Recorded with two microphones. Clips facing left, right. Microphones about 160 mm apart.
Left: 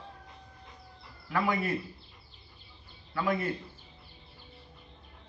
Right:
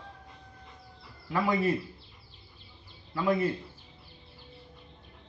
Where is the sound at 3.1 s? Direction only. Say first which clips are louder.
Right 3 dB; 25° right (ahead or behind).